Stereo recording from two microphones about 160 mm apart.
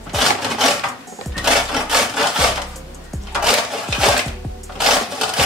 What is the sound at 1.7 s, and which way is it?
Sawing, 5° right (ahead or behind).